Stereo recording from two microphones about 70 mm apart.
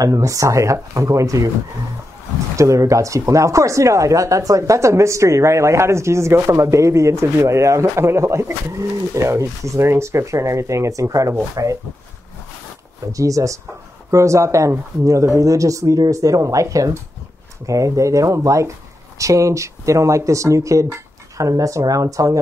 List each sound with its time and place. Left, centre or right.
0.0 s speech: right
2.5 s speech: right
13.1 s speech: right